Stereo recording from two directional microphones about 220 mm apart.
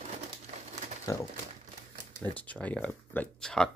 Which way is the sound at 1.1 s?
15° left (ahead or behind).